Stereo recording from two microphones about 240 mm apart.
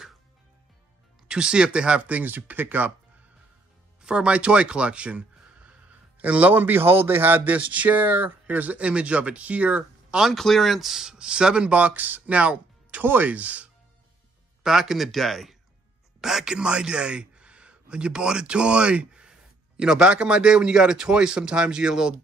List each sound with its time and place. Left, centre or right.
1.2 s speech: centre
4.0 s a man's voice: centre